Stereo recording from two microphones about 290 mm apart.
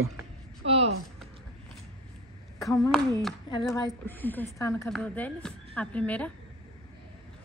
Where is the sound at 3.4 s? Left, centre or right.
Centre.